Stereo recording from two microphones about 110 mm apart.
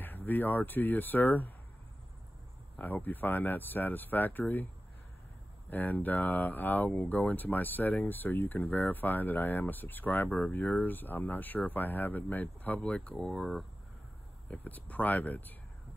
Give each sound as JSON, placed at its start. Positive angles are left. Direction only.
{"t": 0.0, "sound": "speech", "side_deg": 15}
{"t": 2.8, "sound": "speech", "side_deg": 15}
{"t": 5.7, "sound": "speech", "side_deg": 15}
{"t": 14.5, "sound": "speech", "side_deg": 15}